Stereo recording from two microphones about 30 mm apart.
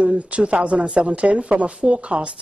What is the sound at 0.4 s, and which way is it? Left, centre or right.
A woman's voice, right.